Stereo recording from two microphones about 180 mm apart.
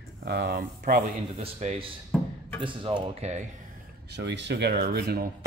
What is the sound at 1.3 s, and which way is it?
Speech, 35° right (ahead or behind).